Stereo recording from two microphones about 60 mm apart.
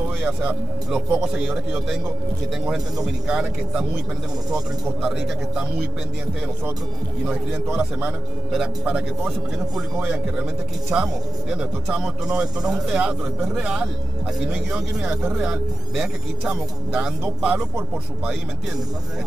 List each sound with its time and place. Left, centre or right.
0.2 s a man's voice: right
5.1 s speech: centre
7.2 s speech: centre
7.7 s a man's voice: centre